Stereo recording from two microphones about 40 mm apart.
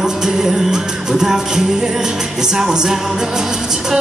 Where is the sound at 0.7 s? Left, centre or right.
Centre.